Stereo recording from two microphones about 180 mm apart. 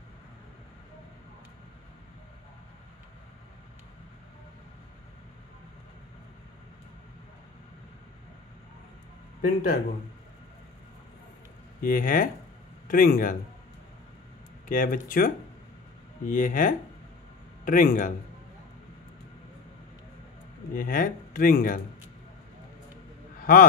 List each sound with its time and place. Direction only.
9.4 s speech: 55° left (ahead or behind)
11.8 s a man's voice: 50° left (ahead or behind)
14.7 s speech: 50° left (ahead or behind)
20.7 s speech: 50° left (ahead or behind)
23.4 s speech: 50° left (ahead or behind)